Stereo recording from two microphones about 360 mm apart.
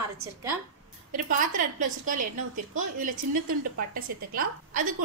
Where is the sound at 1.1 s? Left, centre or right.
Right.